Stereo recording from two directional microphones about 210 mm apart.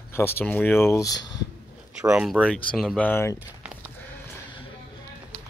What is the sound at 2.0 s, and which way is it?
Speech, 5° right (ahead or behind).